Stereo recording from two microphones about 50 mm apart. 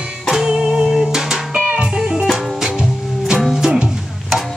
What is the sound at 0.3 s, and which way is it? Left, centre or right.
Music, centre.